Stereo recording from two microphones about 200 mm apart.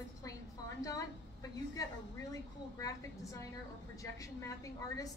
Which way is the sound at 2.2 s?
15° left (ahead or behind).